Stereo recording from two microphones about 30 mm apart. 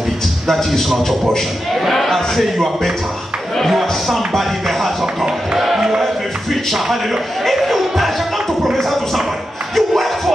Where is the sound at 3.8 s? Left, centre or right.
Centre.